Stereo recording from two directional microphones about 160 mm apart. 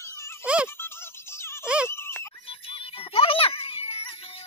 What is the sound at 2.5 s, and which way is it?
Music, 35° left (ahead or behind).